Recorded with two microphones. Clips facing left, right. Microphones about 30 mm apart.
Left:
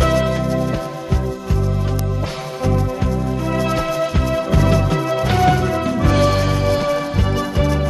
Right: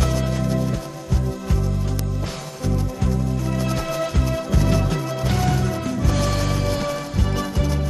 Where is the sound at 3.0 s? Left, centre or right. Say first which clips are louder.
Left 3 dB; left.